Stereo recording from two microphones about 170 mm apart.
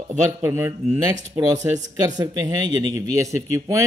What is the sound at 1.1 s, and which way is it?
Speech, 45° right (ahead or behind).